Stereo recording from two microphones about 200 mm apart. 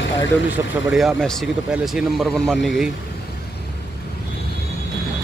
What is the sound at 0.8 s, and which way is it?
Speech, centre (ahead or behind).